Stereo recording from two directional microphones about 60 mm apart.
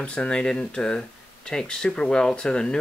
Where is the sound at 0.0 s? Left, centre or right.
Centre.